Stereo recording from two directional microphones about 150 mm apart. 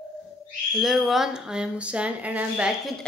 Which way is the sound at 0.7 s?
Centre (ahead or behind).